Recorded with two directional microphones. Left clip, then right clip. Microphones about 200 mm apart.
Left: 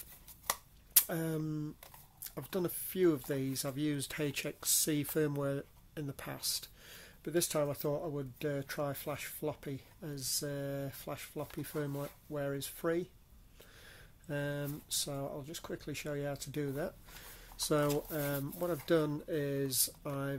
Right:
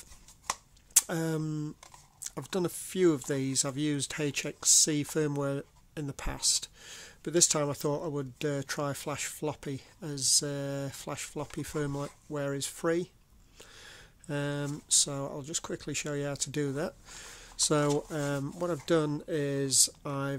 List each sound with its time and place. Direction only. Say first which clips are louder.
0.9 s speech: right 6 dB; 35° right (ahead or behind)